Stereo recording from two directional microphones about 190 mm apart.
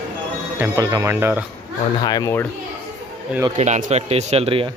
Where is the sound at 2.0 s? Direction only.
20° left (ahead or behind).